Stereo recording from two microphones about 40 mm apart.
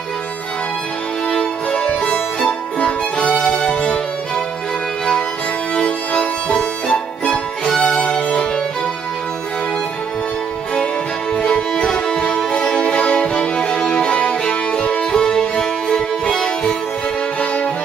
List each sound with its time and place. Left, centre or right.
1.3 s music: left
5.8 s music: left
11.3 s music: left